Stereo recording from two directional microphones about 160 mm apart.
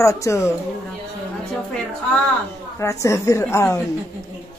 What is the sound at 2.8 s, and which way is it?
Speech, 20° left (ahead or behind).